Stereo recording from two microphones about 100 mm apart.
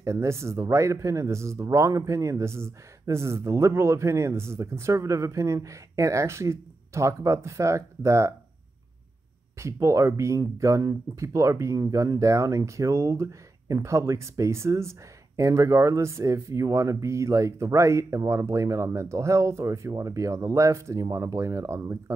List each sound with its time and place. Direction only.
0.0 s speech: 30° right (ahead or behind)
9.6 s speech: 30° right (ahead or behind)